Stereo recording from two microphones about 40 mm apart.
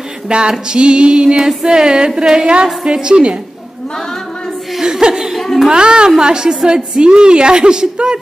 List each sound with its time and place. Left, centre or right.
0.3 s a woman's voice: right
5.0 s speech: centre
5.4 s a child's voice: centre
5.7 s a woman's voice: right